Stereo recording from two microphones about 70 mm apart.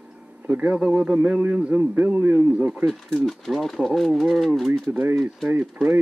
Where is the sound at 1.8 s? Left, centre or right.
Right.